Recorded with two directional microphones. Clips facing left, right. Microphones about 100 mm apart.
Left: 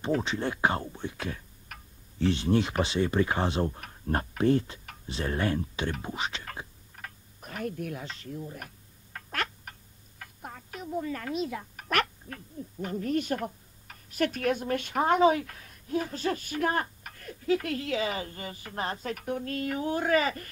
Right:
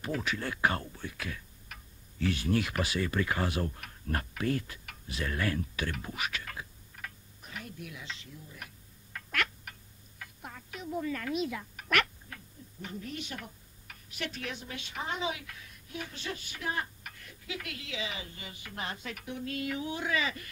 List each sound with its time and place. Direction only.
0.2 s speech: 25° left (ahead or behind)
1.7 s tick-tock: 50° left (ahead or behind)
2.1 s speech: 30° left (ahead or behind)
6.4 s a sound: 35° left (ahead or behind)
7.3 s a sound: 50° left (ahead or behind)
12.8 s a woman's voice: 45° left (ahead or behind)